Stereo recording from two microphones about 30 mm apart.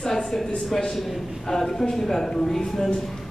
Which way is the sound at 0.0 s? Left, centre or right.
Centre.